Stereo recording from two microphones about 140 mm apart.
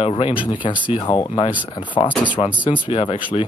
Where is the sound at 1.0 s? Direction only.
30° left (ahead or behind).